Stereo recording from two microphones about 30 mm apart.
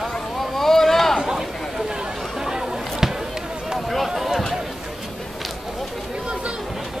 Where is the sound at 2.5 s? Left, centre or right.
Right.